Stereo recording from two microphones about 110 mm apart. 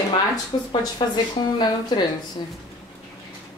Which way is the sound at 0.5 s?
45° left (ahead or behind).